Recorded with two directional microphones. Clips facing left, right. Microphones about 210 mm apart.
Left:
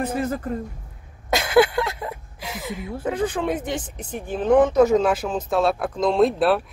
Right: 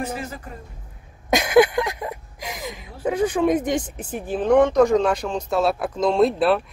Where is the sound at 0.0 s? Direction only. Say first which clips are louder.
Left 5 dB; 55° left (ahead or behind).